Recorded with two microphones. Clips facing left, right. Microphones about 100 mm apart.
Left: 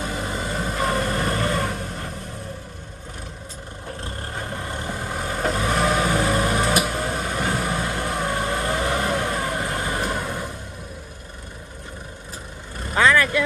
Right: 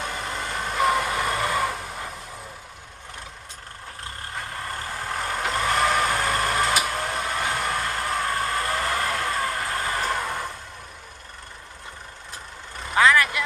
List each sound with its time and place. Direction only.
0.0 s vehicle: 5° left (ahead or behind)
4.0 s vehicle: 30° left (ahead or behind)
5.0 s vehicle: 5° left (ahead or behind); by 9.2 s 20° left (ahead or behind)
9.2 s vehicle: 5° left (ahead or behind)
9.7 s vehicle: 15° left (ahead or behind)
13.1 s vehicle: 15° right (ahead or behind)